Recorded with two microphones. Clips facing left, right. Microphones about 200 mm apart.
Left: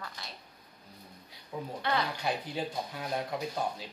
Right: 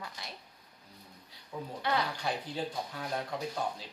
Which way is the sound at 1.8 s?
10° right (ahead or behind).